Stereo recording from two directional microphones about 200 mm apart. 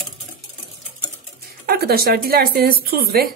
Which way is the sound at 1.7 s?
50° right (ahead or behind).